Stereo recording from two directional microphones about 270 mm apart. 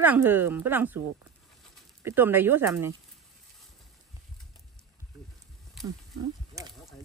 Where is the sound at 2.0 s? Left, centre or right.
Centre.